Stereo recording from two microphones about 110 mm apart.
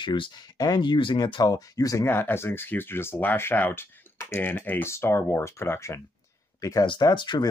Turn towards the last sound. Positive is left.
turn(degrees=45)  # may be behind; listen again after turning